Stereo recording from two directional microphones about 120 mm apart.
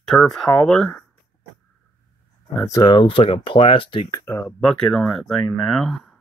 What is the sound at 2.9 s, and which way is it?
Speech, 50° left (ahead or behind).